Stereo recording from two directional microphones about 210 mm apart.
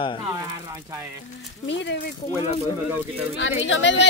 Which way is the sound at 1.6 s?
55° left (ahead or behind).